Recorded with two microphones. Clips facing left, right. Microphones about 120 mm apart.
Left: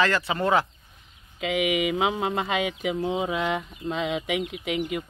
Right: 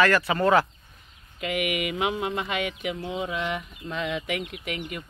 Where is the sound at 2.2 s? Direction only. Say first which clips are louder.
Left 2 dB; 25° left (ahead or behind).